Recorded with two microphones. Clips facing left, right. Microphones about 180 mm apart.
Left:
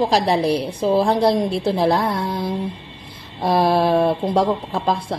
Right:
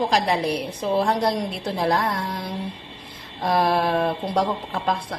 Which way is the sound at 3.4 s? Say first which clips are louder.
Left 4 dB; 30° left (ahead or behind).